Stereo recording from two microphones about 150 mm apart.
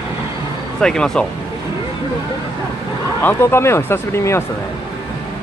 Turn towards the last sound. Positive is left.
turn(degrees=15)  # may be behind; listen again after turning